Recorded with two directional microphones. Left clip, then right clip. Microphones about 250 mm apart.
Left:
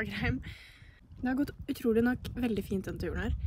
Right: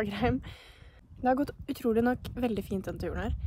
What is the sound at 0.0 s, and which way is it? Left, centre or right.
Speech, centre.